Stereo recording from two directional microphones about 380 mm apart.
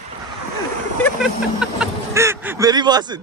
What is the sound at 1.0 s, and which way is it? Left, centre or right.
Speech, centre.